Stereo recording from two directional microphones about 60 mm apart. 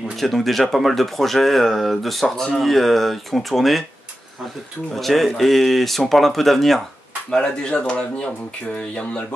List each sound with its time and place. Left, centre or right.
0.2 s speech: centre
4.9 s speech: centre